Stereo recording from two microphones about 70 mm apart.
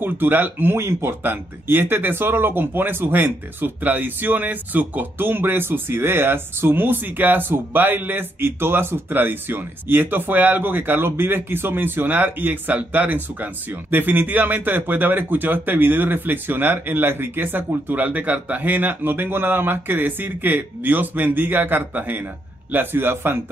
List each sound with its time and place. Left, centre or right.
0.0 s a man's voice: right